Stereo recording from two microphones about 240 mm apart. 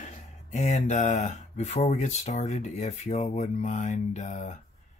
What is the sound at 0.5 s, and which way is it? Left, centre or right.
Speech, left.